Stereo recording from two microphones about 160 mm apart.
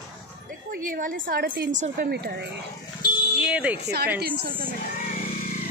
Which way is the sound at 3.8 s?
90° right.